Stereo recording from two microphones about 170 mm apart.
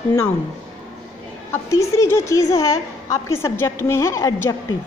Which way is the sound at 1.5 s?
15° left (ahead or behind).